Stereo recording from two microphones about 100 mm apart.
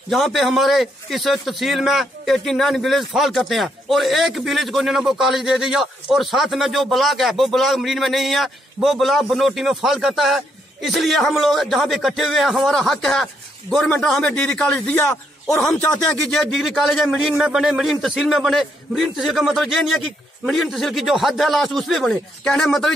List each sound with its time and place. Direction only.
0.1 s a man's voice: centre (ahead or behind); by 16.2 s 20° left (ahead or behind)
16.3 s a man's voice: 5° left (ahead or behind)